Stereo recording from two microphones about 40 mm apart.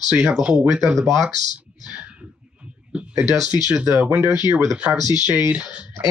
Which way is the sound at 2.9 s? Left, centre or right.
Right.